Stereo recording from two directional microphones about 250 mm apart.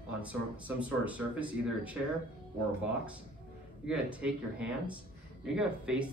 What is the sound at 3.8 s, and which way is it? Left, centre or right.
Speech, centre.